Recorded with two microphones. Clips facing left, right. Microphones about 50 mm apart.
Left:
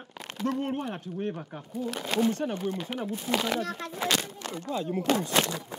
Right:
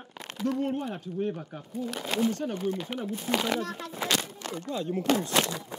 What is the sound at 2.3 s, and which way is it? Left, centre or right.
Speech, left.